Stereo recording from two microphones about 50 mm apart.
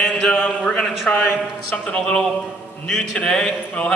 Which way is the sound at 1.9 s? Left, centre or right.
Centre.